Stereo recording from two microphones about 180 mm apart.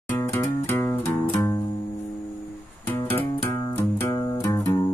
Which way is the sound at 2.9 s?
10° left (ahead or behind).